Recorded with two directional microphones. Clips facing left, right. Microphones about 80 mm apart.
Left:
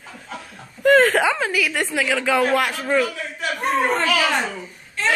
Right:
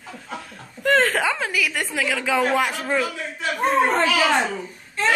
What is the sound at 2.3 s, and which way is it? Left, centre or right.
Speech, centre.